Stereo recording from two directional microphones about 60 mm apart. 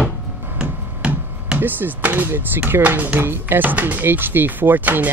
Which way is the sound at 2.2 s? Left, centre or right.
Right.